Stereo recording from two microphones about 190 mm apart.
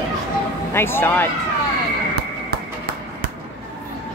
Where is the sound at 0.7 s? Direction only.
10° left (ahead or behind).